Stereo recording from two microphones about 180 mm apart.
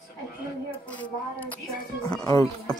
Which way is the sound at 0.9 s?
10° left (ahead or behind).